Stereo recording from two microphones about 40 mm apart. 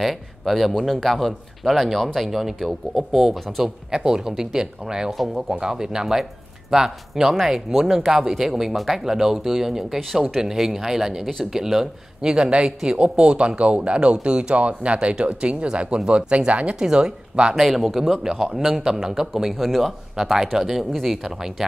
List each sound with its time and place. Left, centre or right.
0.0 s a man's voice: centre
3.9 s speech: centre
5.1 s a man's voice: centre
5.5 s speech: centre
16.7 s speech: centre
17.6 s speech: centre
19.5 s a man's voice: centre